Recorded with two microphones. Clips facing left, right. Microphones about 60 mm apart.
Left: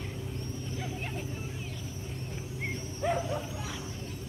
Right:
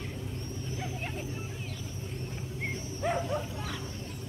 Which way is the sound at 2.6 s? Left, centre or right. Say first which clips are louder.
Even; centre.